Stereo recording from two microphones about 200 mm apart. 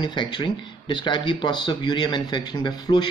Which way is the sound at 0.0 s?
25° left (ahead or behind).